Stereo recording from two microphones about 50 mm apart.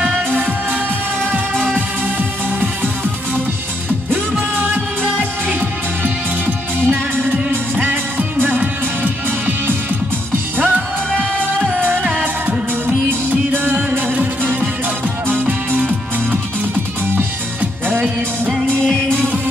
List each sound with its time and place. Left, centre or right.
2.1 s music: right
4.1 s music: right
12.0 s music: right
18.7 s music: centre